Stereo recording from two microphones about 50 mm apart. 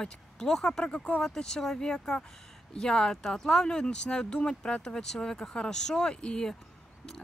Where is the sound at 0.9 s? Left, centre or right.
Left.